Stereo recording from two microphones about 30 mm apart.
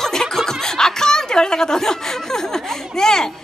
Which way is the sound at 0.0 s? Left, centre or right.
Centre.